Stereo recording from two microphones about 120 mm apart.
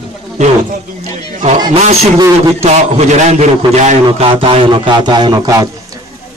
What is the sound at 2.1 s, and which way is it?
Speech, 30° right (ahead or behind).